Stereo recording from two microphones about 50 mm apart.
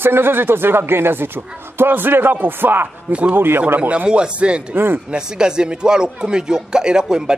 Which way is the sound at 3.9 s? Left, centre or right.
Right.